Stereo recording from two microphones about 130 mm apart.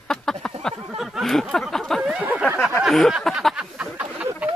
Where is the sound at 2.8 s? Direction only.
Centre (ahead or behind).